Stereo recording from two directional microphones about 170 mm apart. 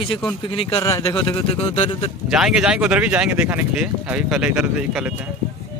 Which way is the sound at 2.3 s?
5° right (ahead or behind).